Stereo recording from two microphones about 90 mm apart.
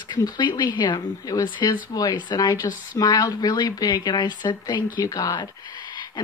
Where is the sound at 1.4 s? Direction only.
55° left (ahead or behind).